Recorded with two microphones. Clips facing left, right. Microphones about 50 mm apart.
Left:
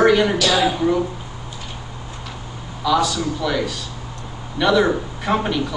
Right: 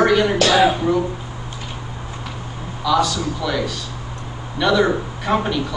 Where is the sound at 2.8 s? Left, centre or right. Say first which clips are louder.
Even; centre.